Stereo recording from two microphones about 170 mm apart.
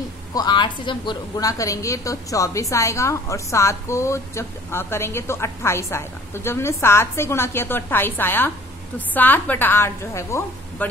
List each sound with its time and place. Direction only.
0.3 s a woman's voice: 25° left (ahead or behind)